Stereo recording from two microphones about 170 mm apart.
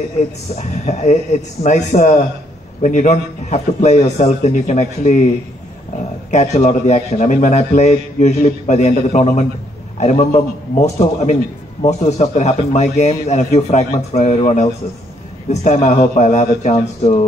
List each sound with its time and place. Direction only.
0.6 s a man's voice: 40° left (ahead or behind)
6.3 s a man's voice: 45° left (ahead or behind)